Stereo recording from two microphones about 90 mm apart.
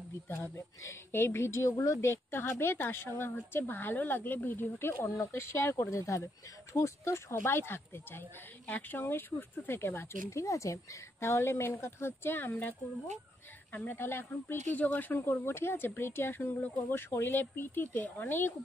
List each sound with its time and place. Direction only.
0.4 s speech: 30° left (ahead or behind)